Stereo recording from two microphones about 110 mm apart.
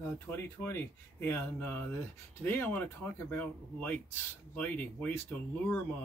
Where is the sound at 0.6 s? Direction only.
30° left (ahead or behind).